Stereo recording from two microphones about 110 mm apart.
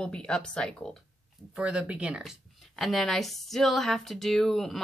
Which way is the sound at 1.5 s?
10° right (ahead or behind).